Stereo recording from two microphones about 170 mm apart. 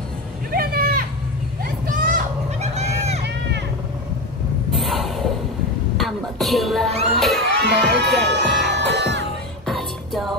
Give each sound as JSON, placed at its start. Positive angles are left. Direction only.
{"t": 0.5, "sound": "a sound", "side_deg": -60}
{"t": 4.7, "sound": "a sound", "side_deg": 0}
{"t": 5.9, "sound": "music", "side_deg": 0}
{"t": 7.2, "sound": "children shouting", "side_deg": 0}
{"t": 7.4, "sound": "crowd", "side_deg": -90}
{"t": 9.7, "sound": "music", "side_deg": 0}